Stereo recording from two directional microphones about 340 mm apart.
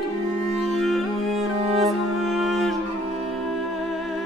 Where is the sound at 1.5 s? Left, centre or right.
Centre.